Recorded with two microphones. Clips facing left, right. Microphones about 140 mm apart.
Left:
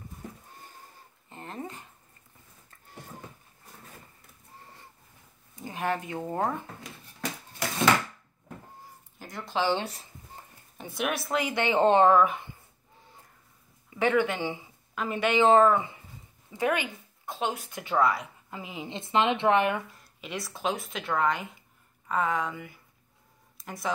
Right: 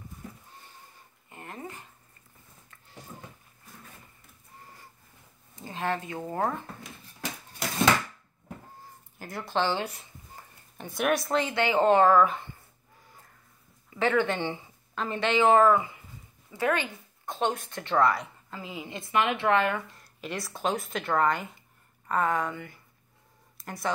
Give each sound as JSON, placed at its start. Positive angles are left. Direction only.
{"t": 1.3, "sound": "a sound", "side_deg": 25}
{"t": 5.6, "sound": "speech", "side_deg": 15}
{"t": 9.2, "sound": "speech", "side_deg": 0}
{"t": 9.6, "sound": "speech", "side_deg": 15}
{"t": 10.8, "sound": "speech", "side_deg": 0}
{"t": 11.5, "sound": "a woman's voice", "side_deg": 25}
{"t": 13.9, "sound": "speech", "side_deg": 15}
{"t": 15.4, "sound": "a woman's voice", "side_deg": 25}
{"t": 16.5, "sound": "speech", "side_deg": 15}
{"t": 17.3, "sound": "speech", "side_deg": 5}
{"t": 18.5, "sound": "a woman's voice", "side_deg": 20}
{"t": 20.0, "sound": "speech", "side_deg": 0}